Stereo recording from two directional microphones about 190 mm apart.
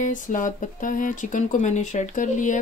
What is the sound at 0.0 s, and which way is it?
Speech, 45° left (ahead or behind).